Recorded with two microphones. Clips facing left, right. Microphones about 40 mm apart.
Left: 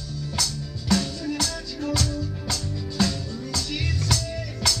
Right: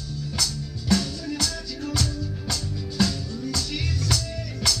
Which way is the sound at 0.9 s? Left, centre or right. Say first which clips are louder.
Even; left.